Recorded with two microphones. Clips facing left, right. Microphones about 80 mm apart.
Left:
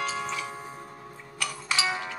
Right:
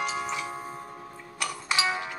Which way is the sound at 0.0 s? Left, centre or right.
Centre.